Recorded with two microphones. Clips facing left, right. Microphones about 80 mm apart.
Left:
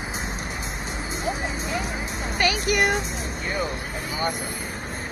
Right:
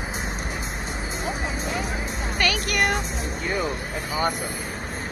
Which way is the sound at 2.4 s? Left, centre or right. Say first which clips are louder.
Left 2 dB; centre.